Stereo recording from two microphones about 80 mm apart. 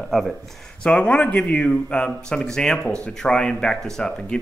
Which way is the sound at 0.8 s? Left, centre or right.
Centre.